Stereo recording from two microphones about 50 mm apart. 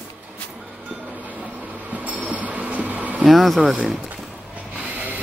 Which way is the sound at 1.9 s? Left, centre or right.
Right.